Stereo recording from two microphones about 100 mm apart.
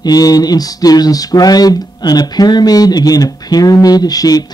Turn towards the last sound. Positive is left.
turn(degrees=40)  # may be behind; listen again after turning